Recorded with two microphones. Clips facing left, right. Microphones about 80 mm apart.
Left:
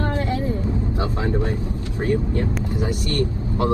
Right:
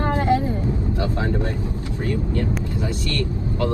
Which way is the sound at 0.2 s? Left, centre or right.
Right.